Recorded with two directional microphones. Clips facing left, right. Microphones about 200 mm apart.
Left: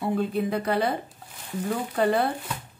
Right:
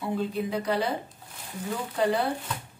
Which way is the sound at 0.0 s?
55° left (ahead or behind).